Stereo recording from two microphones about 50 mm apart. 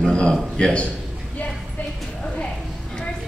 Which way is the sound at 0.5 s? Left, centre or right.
Left.